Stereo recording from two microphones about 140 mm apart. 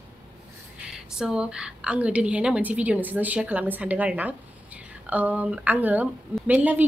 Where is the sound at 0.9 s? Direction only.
5° right (ahead or behind).